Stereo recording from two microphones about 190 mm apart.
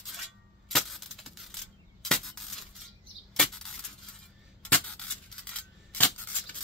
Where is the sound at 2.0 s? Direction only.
Centre (ahead or behind).